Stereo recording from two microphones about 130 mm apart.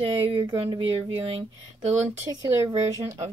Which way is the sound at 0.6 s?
45° right (ahead or behind).